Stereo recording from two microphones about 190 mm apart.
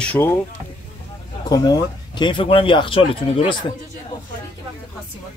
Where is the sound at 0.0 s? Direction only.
10° left (ahead or behind).